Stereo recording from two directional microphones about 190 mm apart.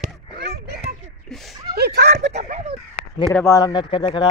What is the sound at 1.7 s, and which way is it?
Speech, 60° right (ahead or behind).